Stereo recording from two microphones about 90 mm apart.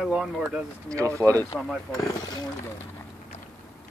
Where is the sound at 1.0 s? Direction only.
35° right (ahead or behind).